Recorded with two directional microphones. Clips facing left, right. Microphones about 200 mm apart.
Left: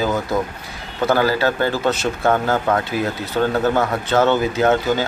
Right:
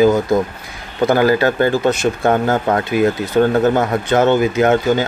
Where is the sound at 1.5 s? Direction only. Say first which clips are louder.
Right 5 dB; 50° right (ahead or behind).